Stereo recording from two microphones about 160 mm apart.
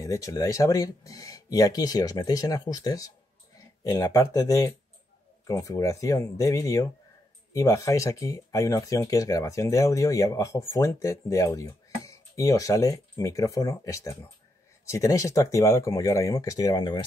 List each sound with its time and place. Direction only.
0.0 s speech: 20° left (ahead or behind)